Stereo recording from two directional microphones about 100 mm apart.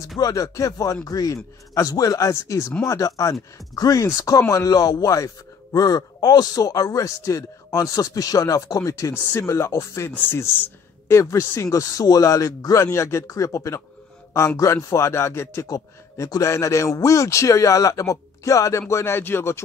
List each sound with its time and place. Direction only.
0.2 s speech: 35° left (ahead or behind)
15.6 s speech: 35° left (ahead or behind)